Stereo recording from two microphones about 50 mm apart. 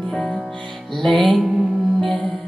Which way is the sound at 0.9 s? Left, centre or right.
Centre.